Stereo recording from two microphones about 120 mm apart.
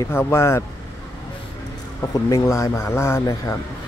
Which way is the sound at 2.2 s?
25° left (ahead or behind).